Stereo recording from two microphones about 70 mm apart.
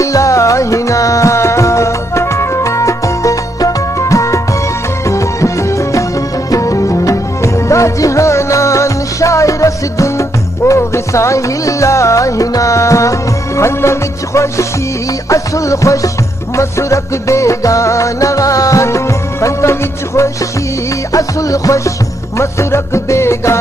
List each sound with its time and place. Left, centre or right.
0.0 s music: left
21.1 s music: left